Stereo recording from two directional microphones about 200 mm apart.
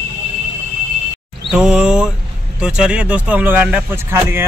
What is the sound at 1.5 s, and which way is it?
A man's voice, 5° right (ahead or behind).